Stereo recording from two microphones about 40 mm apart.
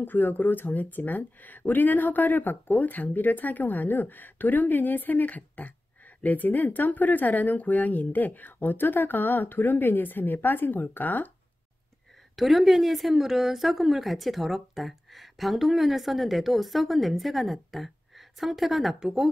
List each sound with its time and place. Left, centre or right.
0.0 s speech: left
12.4 s a woman's voice: centre